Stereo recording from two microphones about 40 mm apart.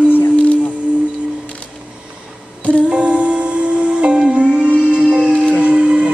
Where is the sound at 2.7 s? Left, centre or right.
Right.